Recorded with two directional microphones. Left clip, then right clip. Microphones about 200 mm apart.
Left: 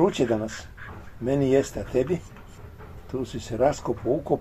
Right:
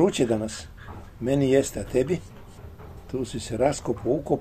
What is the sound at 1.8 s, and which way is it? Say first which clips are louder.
Speech: even; 10° left (ahead or behind).